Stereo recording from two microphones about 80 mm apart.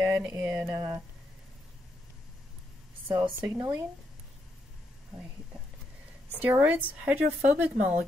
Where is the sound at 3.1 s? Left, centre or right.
Right.